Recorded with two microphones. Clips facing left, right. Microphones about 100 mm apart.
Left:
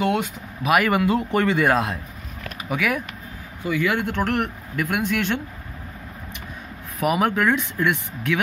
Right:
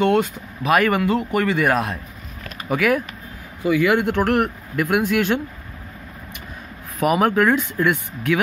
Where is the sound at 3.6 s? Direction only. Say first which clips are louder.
Right 5 dB; 15° right (ahead or behind).